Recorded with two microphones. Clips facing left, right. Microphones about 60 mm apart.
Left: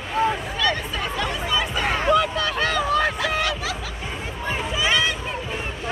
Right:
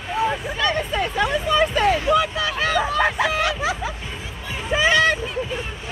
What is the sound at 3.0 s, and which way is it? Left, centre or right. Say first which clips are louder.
Speech: right 3 dB; right.